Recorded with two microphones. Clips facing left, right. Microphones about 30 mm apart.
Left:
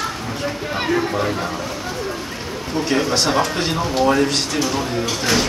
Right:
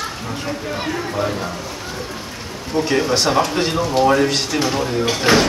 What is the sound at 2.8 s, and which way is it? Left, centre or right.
Speech, centre.